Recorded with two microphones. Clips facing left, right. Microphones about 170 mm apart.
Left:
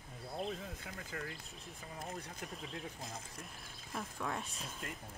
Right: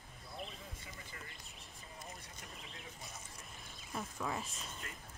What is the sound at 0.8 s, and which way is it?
Speech, 70° left (ahead or behind).